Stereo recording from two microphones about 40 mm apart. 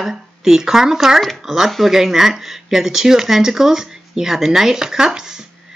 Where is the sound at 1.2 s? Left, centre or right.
Centre.